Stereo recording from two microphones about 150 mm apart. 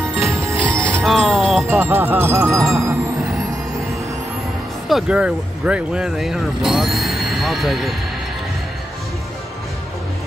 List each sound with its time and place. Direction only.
0.1 s music: centre (ahead or behind)
0.7 s music: 15° right (ahead or behind)
1.0 s music: centre (ahead or behind)
1.7 s music: 15° right (ahead or behind)
4.8 s speech: 5° right (ahead or behind)